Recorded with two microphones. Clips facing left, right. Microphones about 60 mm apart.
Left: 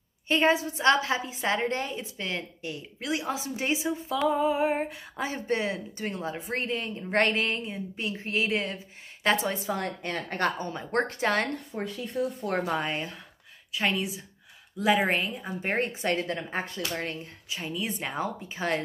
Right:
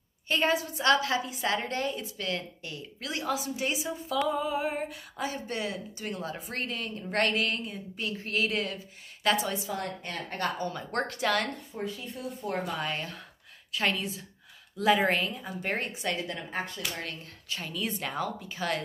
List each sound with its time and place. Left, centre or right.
0.3 s a woman's voice: left
11.8 s speech: left
12.9 s a woman's voice: centre
15.0 s a woman's voice: left
16.7 s a woman's voice: left